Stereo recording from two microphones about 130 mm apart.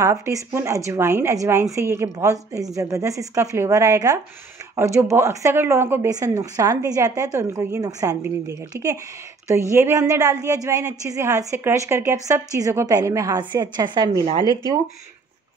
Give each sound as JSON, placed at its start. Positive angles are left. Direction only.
{"t": 0.0, "sound": "a woman's voice", "side_deg": -25}